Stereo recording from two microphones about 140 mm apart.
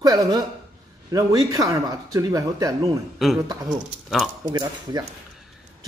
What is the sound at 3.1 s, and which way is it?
Speech, centre (ahead or behind).